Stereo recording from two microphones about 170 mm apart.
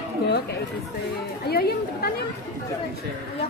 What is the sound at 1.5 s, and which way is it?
Speech, 65° left (ahead or behind).